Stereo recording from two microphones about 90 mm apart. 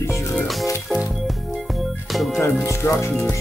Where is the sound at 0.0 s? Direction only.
30° left (ahead or behind).